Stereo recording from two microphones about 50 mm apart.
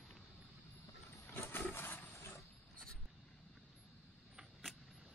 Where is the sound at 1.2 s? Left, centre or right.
Left.